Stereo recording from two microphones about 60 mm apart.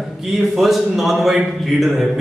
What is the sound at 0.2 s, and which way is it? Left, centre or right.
A man's voice, centre.